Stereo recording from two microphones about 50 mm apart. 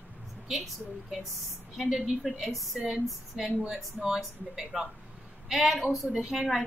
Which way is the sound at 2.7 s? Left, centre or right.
Right.